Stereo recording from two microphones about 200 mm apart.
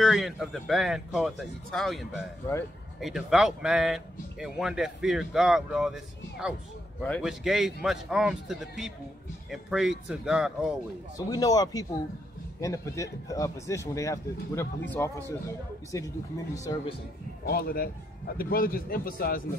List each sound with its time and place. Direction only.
0.0 s speech: centre (ahead or behind)
11.1 s speech: 20° left (ahead or behind)
17.5 s a man's voice: 50° left (ahead or behind)